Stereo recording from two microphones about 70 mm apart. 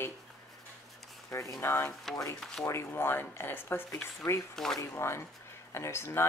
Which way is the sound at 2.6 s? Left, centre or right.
Left.